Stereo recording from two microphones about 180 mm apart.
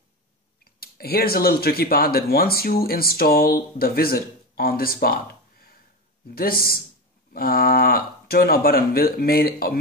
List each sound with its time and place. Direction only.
0.7 s speech: 60° left (ahead or behind)